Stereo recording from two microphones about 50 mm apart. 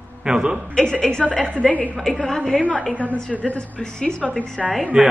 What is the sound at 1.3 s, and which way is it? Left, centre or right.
Speech, centre.